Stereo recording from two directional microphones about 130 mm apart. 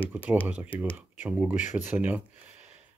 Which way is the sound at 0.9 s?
15° right (ahead or behind).